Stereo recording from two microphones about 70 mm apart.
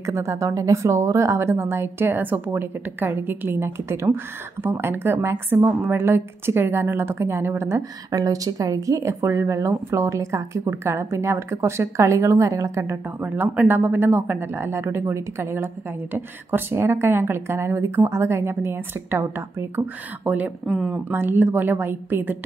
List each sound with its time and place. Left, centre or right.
0.0 s speech: right
8.1 s speech: right
13.2 s speech: right
20.2 s a woman's voice: right
20.6 s speech: centre
21.1 s a woman's voice: right